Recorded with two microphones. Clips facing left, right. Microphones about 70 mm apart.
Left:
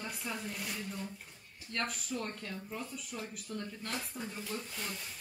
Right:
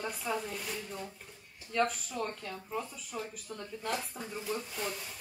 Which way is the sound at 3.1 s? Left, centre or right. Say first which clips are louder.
Right 2 dB; centre.